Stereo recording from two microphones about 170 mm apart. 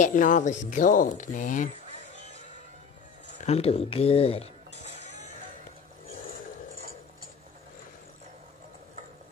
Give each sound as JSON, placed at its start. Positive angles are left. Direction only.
{"t": 0.0, "sound": "speech", "side_deg": 50}
{"t": 3.4, "sound": "speech", "side_deg": 35}